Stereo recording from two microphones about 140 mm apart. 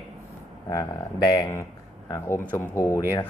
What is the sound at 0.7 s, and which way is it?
Speech, 30° left (ahead or behind).